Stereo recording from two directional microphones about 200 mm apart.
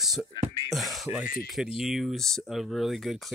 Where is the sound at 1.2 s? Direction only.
45° left (ahead or behind).